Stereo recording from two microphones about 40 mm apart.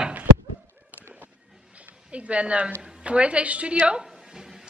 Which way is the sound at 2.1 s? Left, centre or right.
Right.